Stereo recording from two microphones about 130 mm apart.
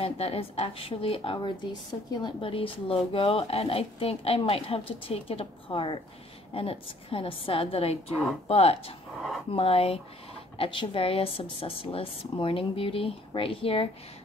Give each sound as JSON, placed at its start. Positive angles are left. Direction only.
{"t": 0.0, "sound": "speech", "side_deg": 50}
{"t": 9.1, "sound": "speech", "side_deg": 0}
{"t": 9.5, "sound": "speech", "side_deg": 45}